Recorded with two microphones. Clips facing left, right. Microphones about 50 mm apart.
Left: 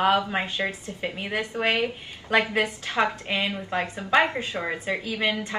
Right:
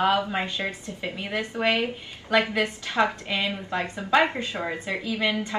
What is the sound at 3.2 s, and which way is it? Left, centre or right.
A woman's voice, left.